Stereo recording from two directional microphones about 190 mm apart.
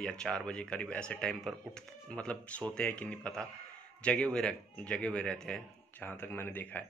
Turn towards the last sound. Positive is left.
turn(degrees=10)  # may be behind; listen again after turning